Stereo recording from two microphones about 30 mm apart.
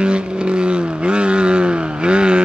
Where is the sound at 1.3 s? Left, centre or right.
Right.